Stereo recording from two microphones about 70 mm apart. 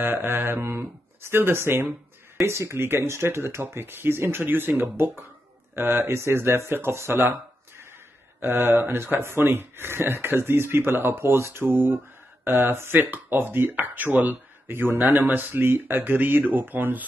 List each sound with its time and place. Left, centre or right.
0.0 s speech: right
8.4 s speech: right